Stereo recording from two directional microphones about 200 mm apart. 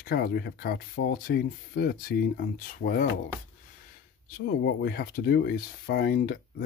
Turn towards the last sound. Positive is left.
turn(degrees=50)  # may be behind; listen again after turning